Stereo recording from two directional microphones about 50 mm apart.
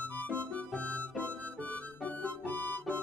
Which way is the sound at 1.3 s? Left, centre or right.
Left.